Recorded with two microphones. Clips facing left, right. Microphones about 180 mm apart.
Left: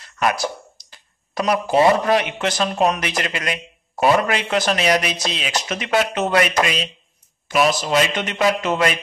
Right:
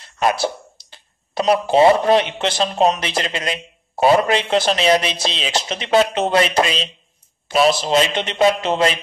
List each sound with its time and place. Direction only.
0.0 s a man's voice: 30° right (ahead or behind)